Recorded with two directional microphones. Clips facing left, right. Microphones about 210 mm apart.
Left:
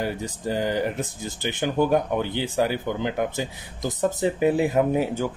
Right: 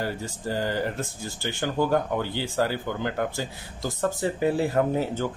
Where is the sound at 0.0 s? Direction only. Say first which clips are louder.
Left 3 dB; 15° left (ahead or behind).